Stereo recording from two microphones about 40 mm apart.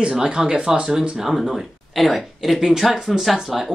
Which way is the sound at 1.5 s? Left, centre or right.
Centre.